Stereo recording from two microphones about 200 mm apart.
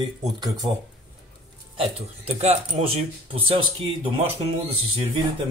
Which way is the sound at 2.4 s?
30° right (ahead or behind).